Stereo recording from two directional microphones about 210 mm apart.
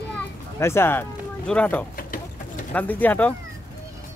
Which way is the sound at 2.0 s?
40° left (ahead or behind).